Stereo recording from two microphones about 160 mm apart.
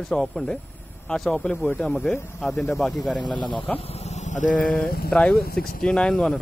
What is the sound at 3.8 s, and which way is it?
Vehicle, 40° left (ahead or behind).